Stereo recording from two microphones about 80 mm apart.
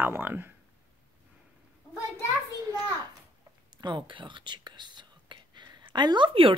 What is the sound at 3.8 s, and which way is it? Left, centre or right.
Speech, right.